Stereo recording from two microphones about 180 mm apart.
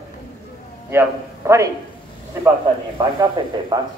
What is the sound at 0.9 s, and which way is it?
Speech, 15° right (ahead or behind).